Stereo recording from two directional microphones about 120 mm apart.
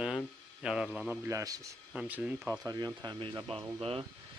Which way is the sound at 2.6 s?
35° right (ahead or behind).